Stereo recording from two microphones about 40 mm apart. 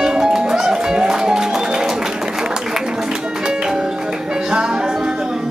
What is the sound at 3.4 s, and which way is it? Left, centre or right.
Music, centre.